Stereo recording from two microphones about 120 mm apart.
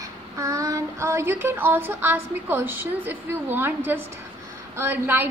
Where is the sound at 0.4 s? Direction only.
30° right (ahead or behind).